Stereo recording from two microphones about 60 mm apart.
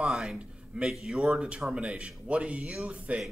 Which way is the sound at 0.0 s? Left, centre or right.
Centre.